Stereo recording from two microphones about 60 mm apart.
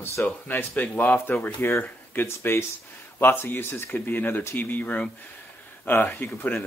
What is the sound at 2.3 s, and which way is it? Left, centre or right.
Speech, left.